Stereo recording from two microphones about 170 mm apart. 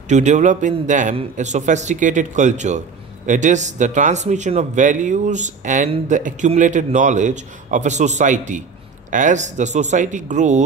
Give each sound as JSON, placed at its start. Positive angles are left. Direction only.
{"t": 0.1, "sound": "a man's voice", "side_deg": -45}